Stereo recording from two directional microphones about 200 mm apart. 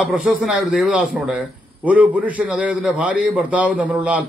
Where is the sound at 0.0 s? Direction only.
5° right (ahead or behind).